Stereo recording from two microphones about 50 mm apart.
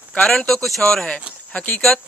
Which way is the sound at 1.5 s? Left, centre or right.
Left.